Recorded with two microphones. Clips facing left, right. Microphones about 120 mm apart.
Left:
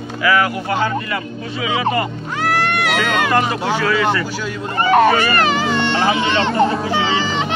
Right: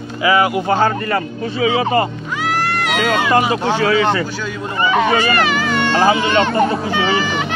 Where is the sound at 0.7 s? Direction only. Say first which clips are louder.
Right 4 dB; 40° right (ahead or behind).